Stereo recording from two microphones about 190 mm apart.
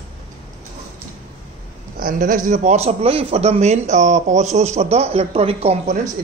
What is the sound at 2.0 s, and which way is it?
A man's voice, 45° right (ahead or behind).